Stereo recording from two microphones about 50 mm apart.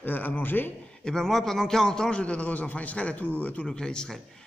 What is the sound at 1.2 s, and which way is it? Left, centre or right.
A man's voice, centre.